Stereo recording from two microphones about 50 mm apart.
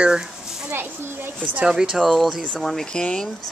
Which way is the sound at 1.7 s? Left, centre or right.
Centre.